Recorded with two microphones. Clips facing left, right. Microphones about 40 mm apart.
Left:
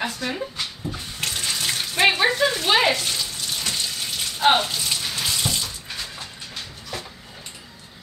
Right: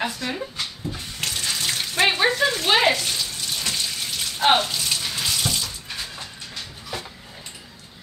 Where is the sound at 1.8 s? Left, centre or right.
Centre.